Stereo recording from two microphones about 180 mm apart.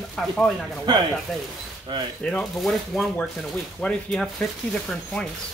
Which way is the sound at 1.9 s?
25° right (ahead or behind).